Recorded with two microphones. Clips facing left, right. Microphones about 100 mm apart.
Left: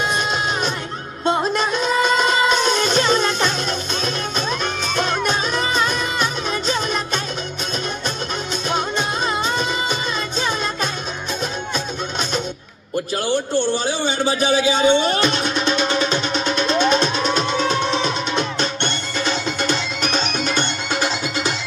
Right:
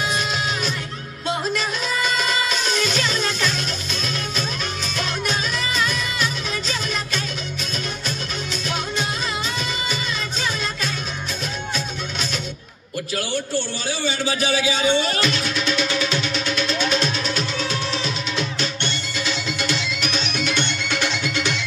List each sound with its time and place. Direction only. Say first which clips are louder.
1.2 s music: left 5 dB; 40° left (ahead or behind)
5.1 s music: left 4 dB; 50° left (ahead or behind)
8.6 s music: left 5 dB; 45° left (ahead or behind)
13.1 s a sound: left 4 dB; 20° left (ahead or behind)
14.1 s a man's voice: left 5 dB; 25° left (ahead or behind)
15.2 s music: left 4 dB; 50° left (ahead or behind)